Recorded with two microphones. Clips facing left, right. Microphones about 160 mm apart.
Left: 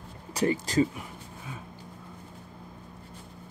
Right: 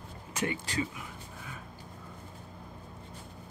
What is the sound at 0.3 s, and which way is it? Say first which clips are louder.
Speech: left 7 dB; 35° left (ahead or behind).